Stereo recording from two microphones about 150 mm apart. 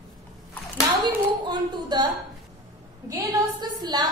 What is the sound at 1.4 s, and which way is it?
Speech, 30° right (ahead or behind).